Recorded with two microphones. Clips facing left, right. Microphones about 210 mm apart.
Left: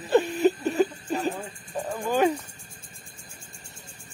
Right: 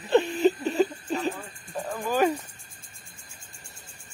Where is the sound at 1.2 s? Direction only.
Centre (ahead or behind).